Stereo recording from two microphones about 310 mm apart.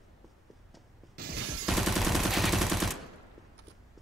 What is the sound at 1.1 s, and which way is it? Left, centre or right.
Shatter, right.